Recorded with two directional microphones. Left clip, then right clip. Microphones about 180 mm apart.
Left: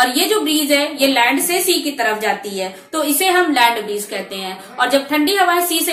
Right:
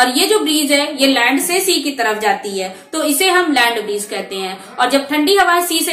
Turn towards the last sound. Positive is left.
turn(degrees=-15)  # may be behind; listen again after turning